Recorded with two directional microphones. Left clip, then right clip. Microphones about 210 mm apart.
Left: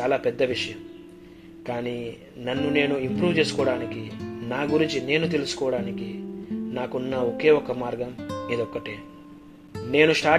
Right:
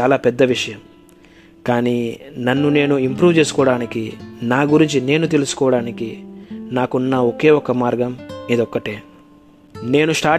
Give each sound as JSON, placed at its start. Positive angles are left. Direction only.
{"t": 0.0, "sound": "a man's voice", "side_deg": -60}
{"t": 8.2, "sound": "music", "side_deg": 0}
{"t": 8.5, "sound": "a man's voice", "side_deg": -60}